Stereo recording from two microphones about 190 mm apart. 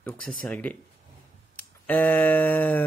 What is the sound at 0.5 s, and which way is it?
Speech, 10° left (ahead or behind).